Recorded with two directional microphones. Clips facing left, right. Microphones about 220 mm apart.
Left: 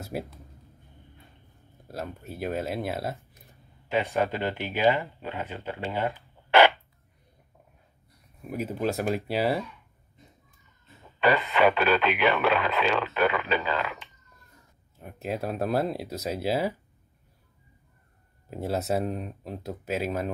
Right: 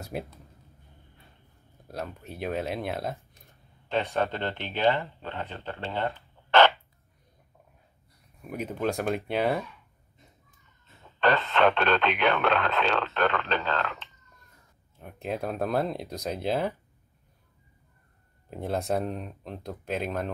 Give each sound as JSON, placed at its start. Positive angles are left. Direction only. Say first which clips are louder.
{"t": 0.0, "sound": "speech", "louder": "left 1 dB", "side_deg": 0}
{"t": 1.9, "sound": "speech", "louder": "left 1 dB", "side_deg": 0}
{"t": 8.5, "sound": "speech", "louder": "left 1 dB", "side_deg": 5}
{"t": 11.1, "sound": "speech", "louder": "left 1 dB", "side_deg": 10}
{"t": 18.5, "sound": "speech", "louder": "left 1 dB", "side_deg": 5}